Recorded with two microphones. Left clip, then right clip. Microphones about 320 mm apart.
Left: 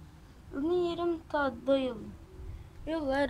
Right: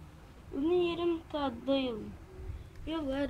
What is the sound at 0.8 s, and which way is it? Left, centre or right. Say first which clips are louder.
A woman's voice: even; left.